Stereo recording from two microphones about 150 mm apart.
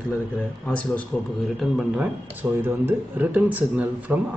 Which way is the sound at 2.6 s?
10° right (ahead or behind).